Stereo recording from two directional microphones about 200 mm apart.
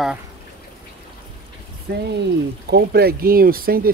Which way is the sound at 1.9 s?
50° right (ahead or behind).